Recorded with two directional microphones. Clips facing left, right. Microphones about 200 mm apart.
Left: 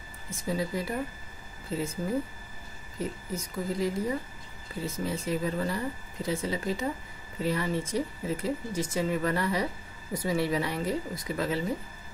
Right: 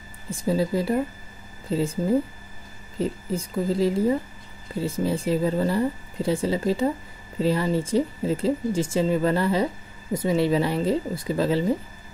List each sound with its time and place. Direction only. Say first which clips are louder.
0.3 s speech: right 8 dB; 30° right (ahead or behind)